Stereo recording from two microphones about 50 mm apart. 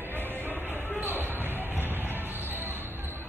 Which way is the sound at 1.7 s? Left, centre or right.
Right.